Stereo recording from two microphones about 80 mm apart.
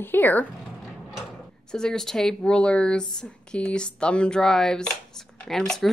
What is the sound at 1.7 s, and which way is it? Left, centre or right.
Speech, centre.